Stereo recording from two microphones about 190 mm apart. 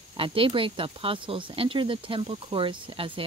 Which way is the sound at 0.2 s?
30° right (ahead or behind).